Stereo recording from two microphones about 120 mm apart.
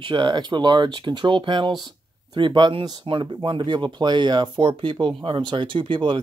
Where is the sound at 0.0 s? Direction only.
40° right (ahead or behind).